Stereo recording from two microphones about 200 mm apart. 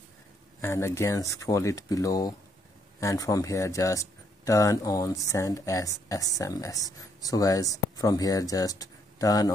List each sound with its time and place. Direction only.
0.6 s speech: 15° left (ahead or behind)